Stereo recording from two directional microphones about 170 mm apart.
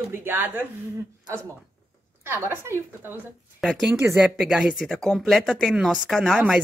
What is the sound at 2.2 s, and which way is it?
Speech, 15° right (ahead or behind).